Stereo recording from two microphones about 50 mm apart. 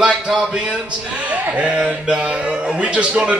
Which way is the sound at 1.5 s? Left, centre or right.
Right.